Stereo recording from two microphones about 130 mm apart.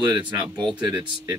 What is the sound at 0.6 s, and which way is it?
Speech, 5° right (ahead or behind).